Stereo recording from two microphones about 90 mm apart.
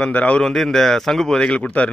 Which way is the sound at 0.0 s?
15° left (ahead or behind).